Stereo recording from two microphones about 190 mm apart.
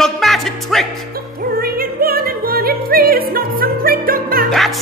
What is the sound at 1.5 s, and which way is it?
Music, 50° right (ahead or behind).